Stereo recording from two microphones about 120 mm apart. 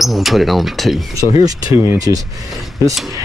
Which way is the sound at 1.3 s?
30° right (ahead or behind).